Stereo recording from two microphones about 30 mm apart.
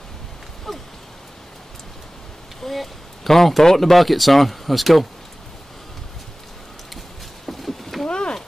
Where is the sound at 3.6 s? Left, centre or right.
Centre.